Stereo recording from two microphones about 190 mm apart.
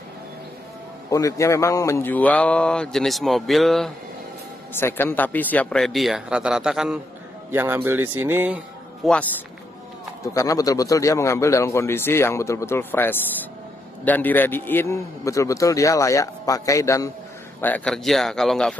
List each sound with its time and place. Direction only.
1.1 s a man's voice: 15° left (ahead or behind); by 3.9 s centre (ahead or behind)
4.7 s a man's voice: 10° left (ahead or behind); by 9.1 s 5° right (ahead or behind)
10.2 s a man's voice: 15° left (ahead or behind)